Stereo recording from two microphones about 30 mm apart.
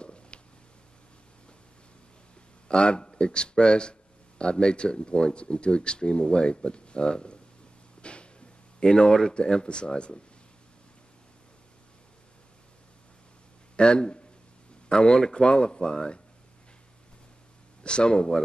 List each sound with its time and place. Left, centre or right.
0.0 s a sound: left
2.7 s speech: left
8.0 s a sound: left
8.8 s speech: left
13.7 s speech: left
17.8 s speech: left